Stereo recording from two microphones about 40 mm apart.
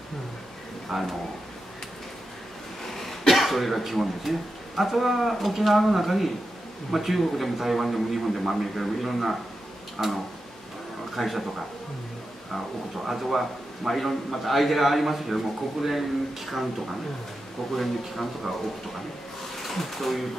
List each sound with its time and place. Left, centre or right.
0.9 s a man's voice: centre
2.9 s a man's voice: centre
11.1 s a man's voice: centre
12.5 s a man's voice: centre
19.5 s speech: centre